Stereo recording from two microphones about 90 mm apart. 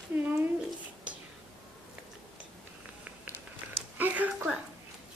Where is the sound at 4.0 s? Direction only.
20° right (ahead or behind).